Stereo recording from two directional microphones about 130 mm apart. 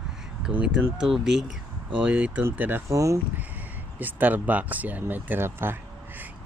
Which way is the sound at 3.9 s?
15° right (ahead or behind).